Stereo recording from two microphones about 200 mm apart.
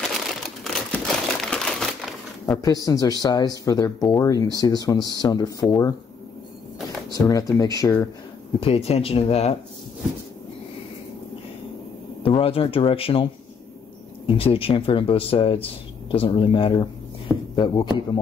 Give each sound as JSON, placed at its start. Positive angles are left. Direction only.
{"t": 0.3, "sound": "crumpling", "side_deg": 0}
{"t": 2.6, "sound": "speech", "side_deg": 20}
{"t": 7.1, "sound": "speech", "side_deg": 15}
{"t": 8.5, "sound": "speech", "side_deg": 30}
{"t": 12.2, "sound": "speech", "side_deg": 25}